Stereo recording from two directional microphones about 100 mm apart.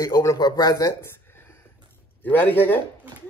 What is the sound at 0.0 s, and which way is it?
Speech, 35° left (ahead or behind).